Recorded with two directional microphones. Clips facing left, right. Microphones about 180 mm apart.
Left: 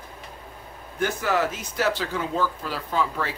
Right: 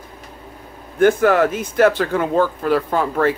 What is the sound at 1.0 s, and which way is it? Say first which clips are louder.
Speech: right 11 dB; 55° right (ahead or behind).